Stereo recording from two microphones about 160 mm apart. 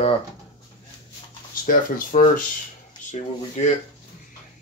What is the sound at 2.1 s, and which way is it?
Speech, 50° left (ahead or behind).